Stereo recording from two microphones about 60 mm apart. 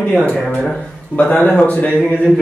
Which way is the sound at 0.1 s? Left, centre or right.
Left.